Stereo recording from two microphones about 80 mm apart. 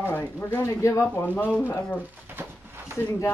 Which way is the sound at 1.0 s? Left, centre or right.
Left.